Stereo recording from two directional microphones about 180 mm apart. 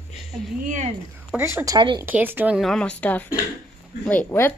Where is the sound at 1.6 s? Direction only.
20° right (ahead or behind).